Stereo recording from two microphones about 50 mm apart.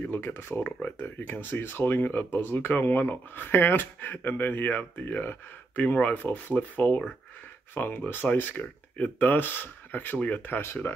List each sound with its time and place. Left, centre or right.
0.1 s speech: left